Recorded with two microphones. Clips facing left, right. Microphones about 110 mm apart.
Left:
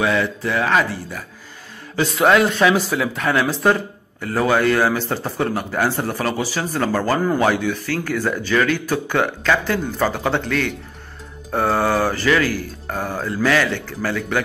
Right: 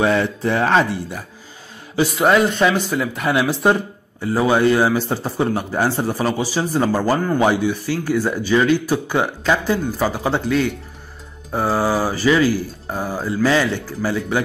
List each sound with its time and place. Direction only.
0.0 s speech: 35° right (ahead or behind)
2.0 s speech: 5° right (ahead or behind)
3.3 s speech: 15° right (ahead or behind)